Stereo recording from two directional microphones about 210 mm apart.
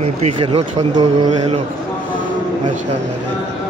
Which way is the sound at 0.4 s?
25° right (ahead or behind).